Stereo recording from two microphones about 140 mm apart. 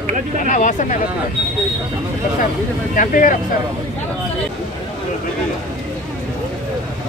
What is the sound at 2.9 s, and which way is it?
Speech, 70° left (ahead or behind).